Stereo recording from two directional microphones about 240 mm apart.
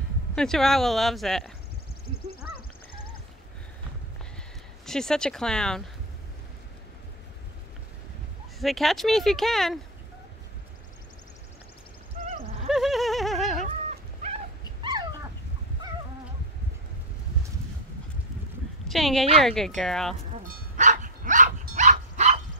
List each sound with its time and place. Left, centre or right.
0.4 s speech: centre
4.8 s speech: centre
8.5 s speech: centre
12.6 s a sound: centre
13.7 s dog: right
14.8 s dog: centre
18.9 s a woman's voice: centre
20.4 s dog: right